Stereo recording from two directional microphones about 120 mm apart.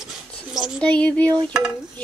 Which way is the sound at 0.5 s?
5° right (ahead or behind).